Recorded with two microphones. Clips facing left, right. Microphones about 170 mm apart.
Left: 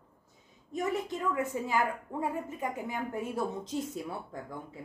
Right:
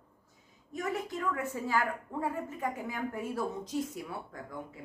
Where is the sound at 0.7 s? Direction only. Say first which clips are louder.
Left 3 dB; 25° left (ahead or behind).